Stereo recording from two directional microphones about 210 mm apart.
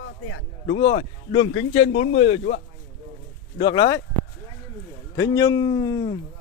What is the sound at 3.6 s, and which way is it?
Speech, 20° left (ahead or behind).